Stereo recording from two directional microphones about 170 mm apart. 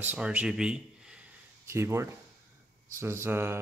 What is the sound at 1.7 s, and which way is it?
Speech, 15° right (ahead or behind).